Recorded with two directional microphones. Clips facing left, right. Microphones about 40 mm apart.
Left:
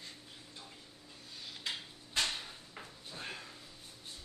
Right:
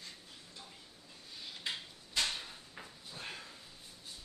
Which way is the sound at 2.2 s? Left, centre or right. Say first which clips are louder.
Even; centre.